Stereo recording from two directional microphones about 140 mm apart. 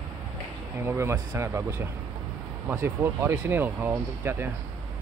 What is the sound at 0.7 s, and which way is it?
Speech, 20° right (ahead or behind).